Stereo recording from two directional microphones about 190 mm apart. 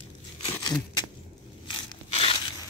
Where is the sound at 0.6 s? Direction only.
25° left (ahead or behind).